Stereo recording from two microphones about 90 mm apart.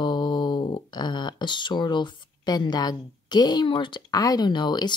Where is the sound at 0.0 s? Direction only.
60° left (ahead or behind).